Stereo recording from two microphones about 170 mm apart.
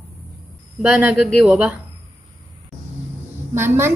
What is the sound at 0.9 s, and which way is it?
Speech, 5° right (ahead or behind).